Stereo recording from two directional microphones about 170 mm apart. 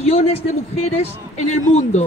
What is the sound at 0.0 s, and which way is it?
Speech, 40° left (ahead or behind).